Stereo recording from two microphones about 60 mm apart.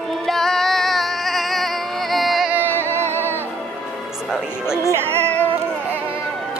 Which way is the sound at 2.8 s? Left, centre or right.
Right.